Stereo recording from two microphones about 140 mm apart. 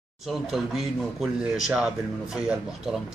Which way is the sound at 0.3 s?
Centre (ahead or behind).